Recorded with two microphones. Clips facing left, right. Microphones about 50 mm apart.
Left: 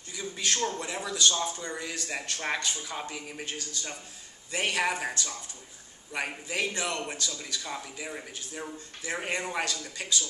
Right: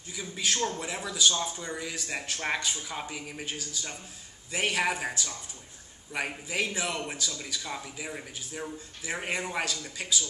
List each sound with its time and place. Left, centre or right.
0.1 s speech: centre